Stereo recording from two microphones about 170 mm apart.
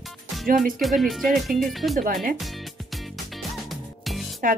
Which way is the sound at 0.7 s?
Centre (ahead or behind).